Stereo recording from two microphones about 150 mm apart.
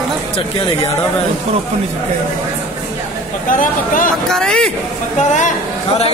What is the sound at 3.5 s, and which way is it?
Speech, 65° left (ahead or behind).